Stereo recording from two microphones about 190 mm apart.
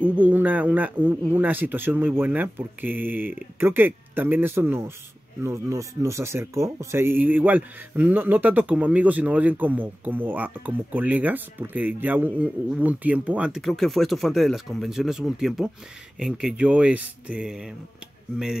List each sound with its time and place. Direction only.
0.0 s speech: 10° right (ahead or behind)